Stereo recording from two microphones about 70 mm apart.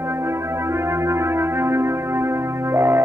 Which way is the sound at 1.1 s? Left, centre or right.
Right.